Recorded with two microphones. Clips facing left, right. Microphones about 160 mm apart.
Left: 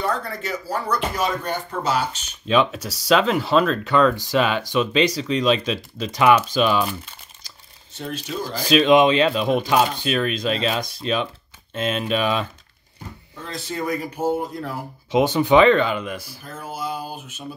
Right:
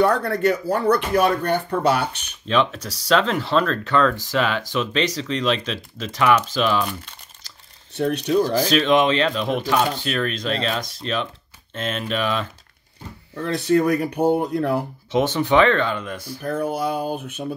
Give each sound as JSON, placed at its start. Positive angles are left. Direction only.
{"t": 0.0, "sound": "speech", "side_deg": -65}
{"t": 2.4, "sound": "speech", "side_deg": 10}
{"t": 7.9, "sound": "speech", "side_deg": -65}
{"t": 8.6, "sound": "speech", "side_deg": 10}
{"t": 13.4, "sound": "speech", "side_deg": -65}
{"t": 15.0, "sound": "speech", "side_deg": 15}
{"t": 16.3, "sound": "speech", "side_deg": -60}